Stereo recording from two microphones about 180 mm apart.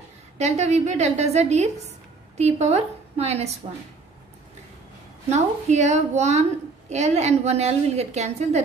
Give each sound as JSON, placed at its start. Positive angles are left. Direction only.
{"t": 0.4, "sound": "a woman's voice", "side_deg": -40}
{"t": 5.3, "sound": "a woman's voice", "side_deg": -40}